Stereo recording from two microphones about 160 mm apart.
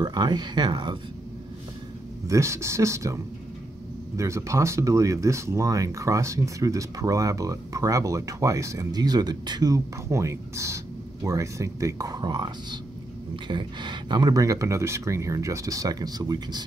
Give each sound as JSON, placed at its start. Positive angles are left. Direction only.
{"t": 0.0, "sound": "speech", "side_deg": -25}
{"t": 2.2, "sound": "speech", "side_deg": -20}
{"t": 4.2, "sound": "speech", "side_deg": -20}